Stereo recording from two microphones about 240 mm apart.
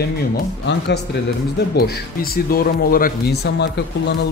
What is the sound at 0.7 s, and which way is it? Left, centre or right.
Speech, left.